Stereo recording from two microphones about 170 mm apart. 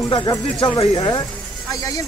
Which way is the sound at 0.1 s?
25° left (ahead or behind).